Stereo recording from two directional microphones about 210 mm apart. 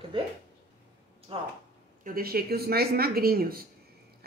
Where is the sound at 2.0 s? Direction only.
45° right (ahead or behind).